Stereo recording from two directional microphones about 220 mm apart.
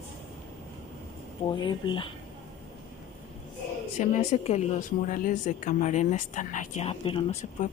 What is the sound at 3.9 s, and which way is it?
Speech, 30° left (ahead or behind).